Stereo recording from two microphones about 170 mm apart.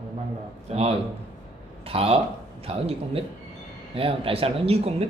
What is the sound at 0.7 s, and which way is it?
Speech, 35° right (ahead or behind).